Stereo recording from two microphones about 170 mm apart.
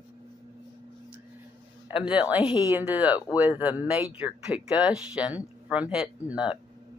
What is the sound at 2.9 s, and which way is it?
Speech, 10° right (ahead or behind).